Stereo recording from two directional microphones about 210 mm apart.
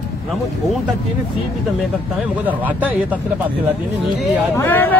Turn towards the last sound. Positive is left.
turn(degrees=10)  # may be behind; listen again after turning